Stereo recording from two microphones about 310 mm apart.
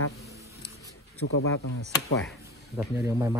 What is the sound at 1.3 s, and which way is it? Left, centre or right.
Speech, left.